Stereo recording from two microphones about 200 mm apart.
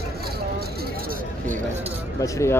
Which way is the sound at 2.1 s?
15° left (ahead or behind).